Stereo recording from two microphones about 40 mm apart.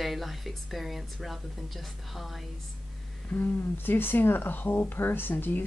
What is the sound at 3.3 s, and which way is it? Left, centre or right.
Speech, left.